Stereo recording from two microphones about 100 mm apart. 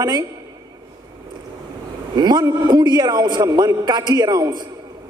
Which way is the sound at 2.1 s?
45° right (ahead or behind).